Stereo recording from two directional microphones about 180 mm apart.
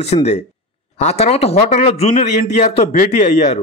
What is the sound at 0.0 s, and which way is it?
A man's voice, 35° left (ahead or behind).